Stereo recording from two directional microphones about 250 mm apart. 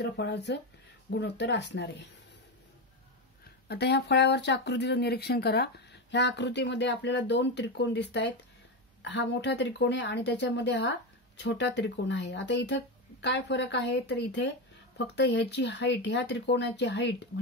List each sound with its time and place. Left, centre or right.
0.0 s speech: left
3.6 s speech: left